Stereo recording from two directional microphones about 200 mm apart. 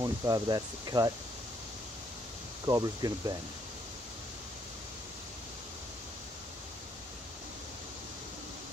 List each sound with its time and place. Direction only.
0.0 s speech: 20° right (ahead or behind)
2.6 s speech: 20° right (ahead or behind)